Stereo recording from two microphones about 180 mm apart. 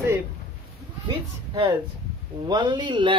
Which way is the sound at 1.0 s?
25° right (ahead or behind).